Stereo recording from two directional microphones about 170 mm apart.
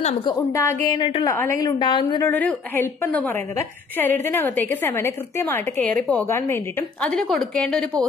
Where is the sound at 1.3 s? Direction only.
15° left (ahead or behind).